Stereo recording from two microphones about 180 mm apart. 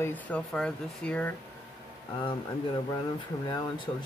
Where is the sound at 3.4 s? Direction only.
25° left (ahead or behind).